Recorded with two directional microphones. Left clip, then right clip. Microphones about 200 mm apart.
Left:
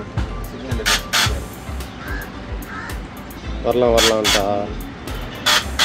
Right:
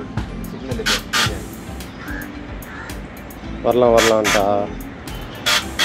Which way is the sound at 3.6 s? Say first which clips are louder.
Right 2 dB; 20° right (ahead or behind).